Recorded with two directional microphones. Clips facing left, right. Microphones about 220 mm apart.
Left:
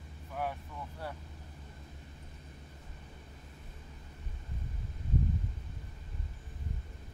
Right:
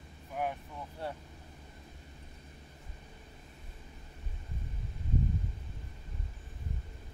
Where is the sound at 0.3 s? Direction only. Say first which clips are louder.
Right 2 dB; 15° right (ahead or behind).